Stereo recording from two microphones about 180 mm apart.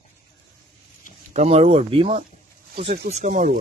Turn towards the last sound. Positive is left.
turn(degrees=-45)  # may be behind; listen again after turning